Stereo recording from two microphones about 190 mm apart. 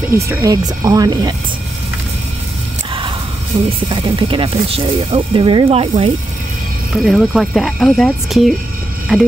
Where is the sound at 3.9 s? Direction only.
25° right (ahead or behind).